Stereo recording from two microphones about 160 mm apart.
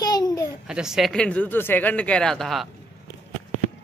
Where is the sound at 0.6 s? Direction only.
5° right (ahead or behind).